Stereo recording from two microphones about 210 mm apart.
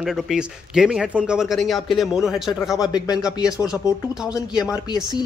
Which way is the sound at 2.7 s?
20° left (ahead or behind).